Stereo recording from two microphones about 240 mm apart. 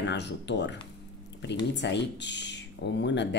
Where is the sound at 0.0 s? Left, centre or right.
Left.